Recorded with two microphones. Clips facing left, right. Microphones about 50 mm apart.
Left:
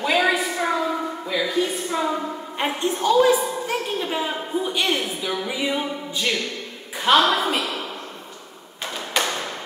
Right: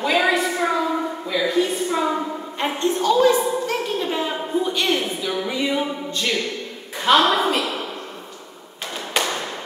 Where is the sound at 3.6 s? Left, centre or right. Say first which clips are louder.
Right 2 dB; centre.